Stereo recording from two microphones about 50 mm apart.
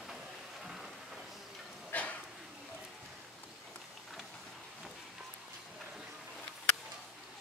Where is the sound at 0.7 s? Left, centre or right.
Centre.